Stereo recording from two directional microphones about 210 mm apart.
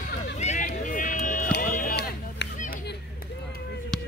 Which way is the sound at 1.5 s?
40° left (ahead or behind).